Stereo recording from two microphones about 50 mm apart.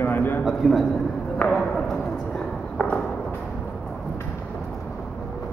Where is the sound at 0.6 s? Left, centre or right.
Centre.